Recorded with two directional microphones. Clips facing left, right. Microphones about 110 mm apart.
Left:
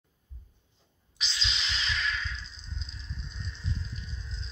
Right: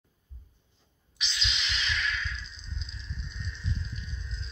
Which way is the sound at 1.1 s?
35° left (ahead or behind).